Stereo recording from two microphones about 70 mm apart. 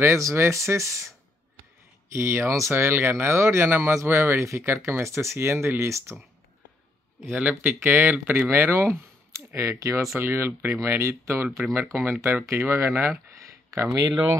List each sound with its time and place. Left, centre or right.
0.0 s speech: right
2.1 s speech: right
7.2 s speech: right
10.1 s speech: right